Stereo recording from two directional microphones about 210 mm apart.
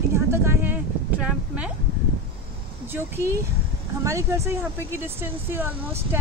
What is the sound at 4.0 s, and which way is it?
Speech, 15° right (ahead or behind).